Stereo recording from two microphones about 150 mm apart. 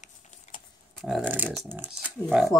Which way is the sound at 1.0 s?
Centre (ahead or behind).